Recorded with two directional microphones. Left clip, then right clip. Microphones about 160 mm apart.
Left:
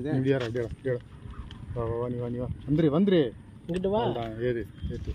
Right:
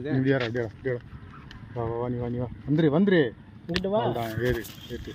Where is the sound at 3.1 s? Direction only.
25° right (ahead or behind).